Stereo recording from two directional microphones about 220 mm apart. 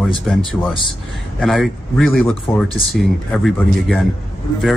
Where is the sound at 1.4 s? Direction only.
Centre (ahead or behind).